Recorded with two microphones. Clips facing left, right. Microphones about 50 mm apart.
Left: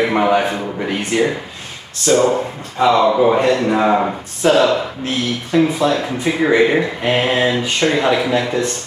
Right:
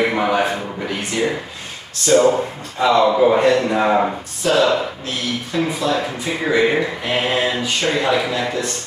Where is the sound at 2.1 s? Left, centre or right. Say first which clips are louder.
Even; centre.